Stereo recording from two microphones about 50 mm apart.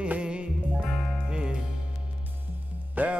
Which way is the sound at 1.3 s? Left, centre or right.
Centre.